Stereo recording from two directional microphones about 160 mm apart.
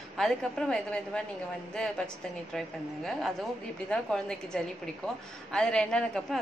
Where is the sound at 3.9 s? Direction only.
5° left (ahead or behind).